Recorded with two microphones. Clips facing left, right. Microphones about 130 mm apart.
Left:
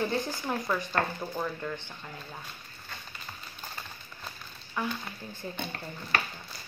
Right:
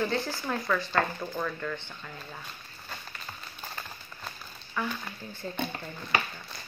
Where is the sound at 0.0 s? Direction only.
20° left (ahead or behind).